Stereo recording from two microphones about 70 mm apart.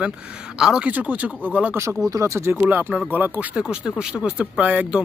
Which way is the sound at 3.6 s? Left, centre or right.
Centre.